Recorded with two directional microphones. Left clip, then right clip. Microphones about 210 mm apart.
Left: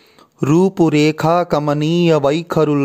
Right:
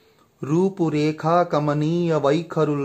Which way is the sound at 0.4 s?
45° left (ahead or behind).